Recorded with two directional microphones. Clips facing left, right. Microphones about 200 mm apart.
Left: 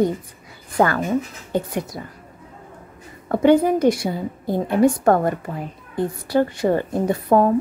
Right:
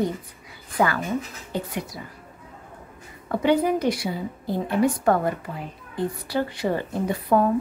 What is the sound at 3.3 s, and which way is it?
A woman's voice, 50° left (ahead or behind).